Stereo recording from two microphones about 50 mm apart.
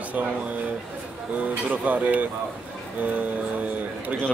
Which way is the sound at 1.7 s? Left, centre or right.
Right.